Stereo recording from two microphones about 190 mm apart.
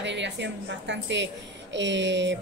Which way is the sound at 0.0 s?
70° right (ahead or behind).